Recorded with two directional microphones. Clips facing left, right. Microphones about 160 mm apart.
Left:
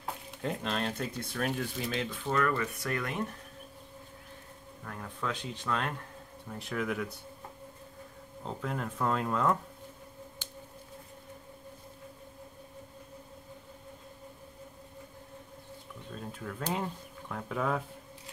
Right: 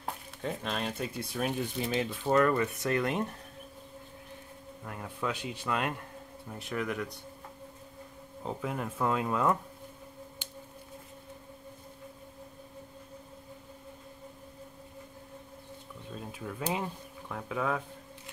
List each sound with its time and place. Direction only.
0.4 s speech: 5° right (ahead or behind); by 3.3 s 25° right (ahead or behind)
4.8 s speech: 10° right (ahead or behind)
6.6 s speech: centre (ahead or behind)
8.5 s speech: 10° right (ahead or behind)
16.1 s speech: 10° right (ahead or behind)